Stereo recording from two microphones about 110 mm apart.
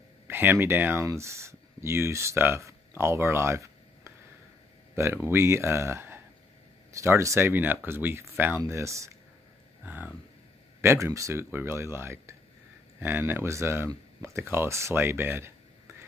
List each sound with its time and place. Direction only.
0.3 s speech: 20° right (ahead or behind)
9.8 s speech: 15° right (ahead or behind)